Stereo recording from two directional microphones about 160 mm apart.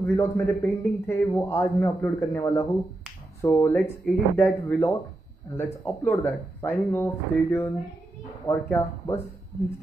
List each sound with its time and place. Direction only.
0.0 s a man's voice: 15° left (ahead or behind)